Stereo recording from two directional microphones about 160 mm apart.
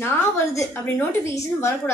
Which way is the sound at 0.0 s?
15° left (ahead or behind).